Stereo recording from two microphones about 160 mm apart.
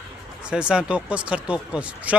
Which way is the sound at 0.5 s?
5° right (ahead or behind).